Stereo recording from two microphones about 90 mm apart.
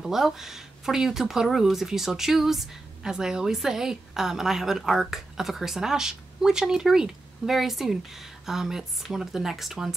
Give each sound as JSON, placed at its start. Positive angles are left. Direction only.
{"t": 0.0, "sound": "speech", "side_deg": -5}